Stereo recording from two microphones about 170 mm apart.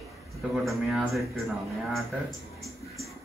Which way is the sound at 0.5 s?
Centre (ahead or behind).